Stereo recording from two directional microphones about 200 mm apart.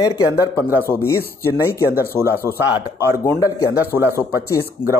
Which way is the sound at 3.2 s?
15° left (ahead or behind).